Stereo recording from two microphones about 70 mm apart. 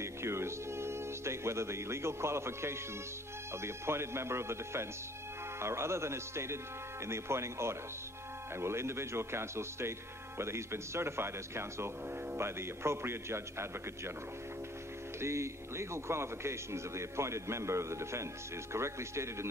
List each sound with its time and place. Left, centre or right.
0.0 s speech: right
15.1 s speech: right